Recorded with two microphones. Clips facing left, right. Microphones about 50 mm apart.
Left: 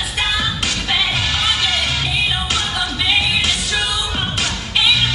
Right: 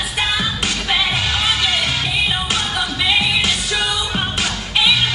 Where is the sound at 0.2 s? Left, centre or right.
Centre.